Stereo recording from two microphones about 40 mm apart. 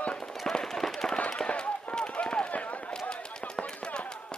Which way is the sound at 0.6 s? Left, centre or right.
Centre.